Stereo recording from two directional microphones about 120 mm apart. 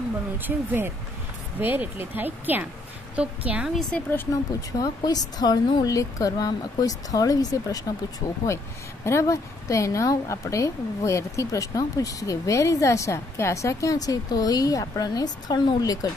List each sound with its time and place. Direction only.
0.4 s a woman's voice: 15° right (ahead or behind); by 4.0 s centre (ahead or behind)
4.3 s speech: 30° left (ahead or behind)
9.0 s a woman's voice: 25° left (ahead or behind)